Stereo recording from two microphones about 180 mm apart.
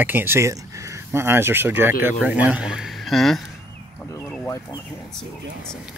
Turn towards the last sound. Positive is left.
turn(degrees=10)  # may be behind; listen again after turning